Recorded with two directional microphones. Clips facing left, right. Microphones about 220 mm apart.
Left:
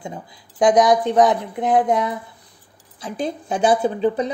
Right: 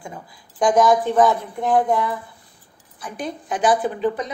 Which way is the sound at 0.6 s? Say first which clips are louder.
Left 1 dB; 20° left (ahead or behind).